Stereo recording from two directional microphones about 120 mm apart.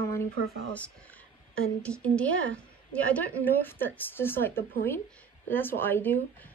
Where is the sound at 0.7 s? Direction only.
15° left (ahead or behind).